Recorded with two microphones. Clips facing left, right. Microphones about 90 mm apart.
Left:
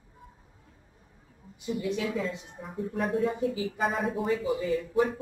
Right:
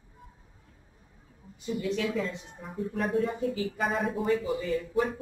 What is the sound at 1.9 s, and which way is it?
Speech, 15° left (ahead or behind).